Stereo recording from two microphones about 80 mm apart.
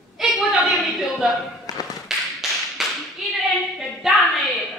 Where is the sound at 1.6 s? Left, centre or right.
Left.